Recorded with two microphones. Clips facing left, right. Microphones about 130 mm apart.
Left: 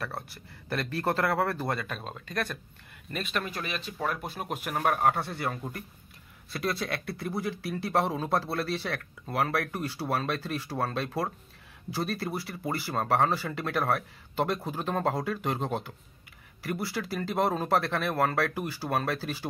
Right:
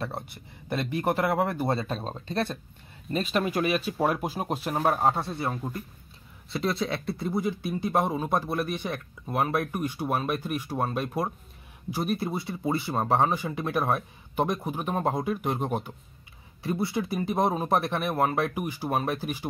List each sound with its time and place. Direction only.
0.0 s speech: 20° right (ahead or behind)
1.8 s speech: 35° right (ahead or behind)
3.6 s speech: 10° right (ahead or behind)
4.4 s speech: 35° right (ahead or behind); by 19.4 s 15° right (ahead or behind)